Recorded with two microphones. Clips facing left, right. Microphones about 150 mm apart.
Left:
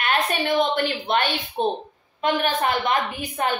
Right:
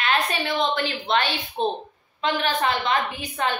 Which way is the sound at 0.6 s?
50° left (ahead or behind).